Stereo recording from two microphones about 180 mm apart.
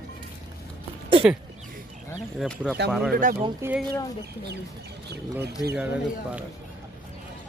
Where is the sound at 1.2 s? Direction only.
5° right (ahead or behind).